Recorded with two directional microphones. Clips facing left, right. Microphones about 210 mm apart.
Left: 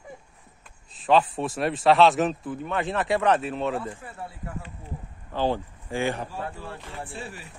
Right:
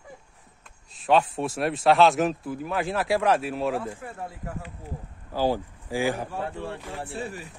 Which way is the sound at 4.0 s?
45° right (ahead or behind).